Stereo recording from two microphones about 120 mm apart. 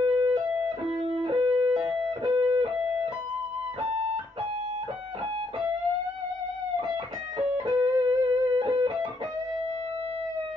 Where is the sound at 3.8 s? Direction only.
55° right (ahead or behind).